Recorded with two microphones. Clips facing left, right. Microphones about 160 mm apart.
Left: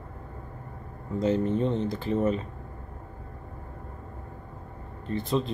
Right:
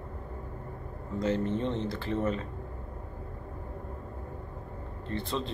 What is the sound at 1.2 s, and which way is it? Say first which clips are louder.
A man's voice: left 4 dB; 15° left (ahead or behind).